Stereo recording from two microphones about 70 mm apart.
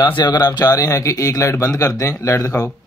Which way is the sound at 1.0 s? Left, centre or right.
Left.